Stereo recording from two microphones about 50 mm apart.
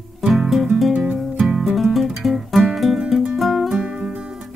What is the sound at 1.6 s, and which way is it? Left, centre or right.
Music, centre.